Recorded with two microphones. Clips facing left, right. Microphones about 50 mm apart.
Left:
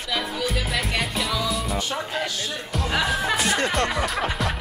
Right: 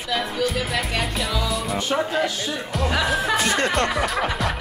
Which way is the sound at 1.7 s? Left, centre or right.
Right.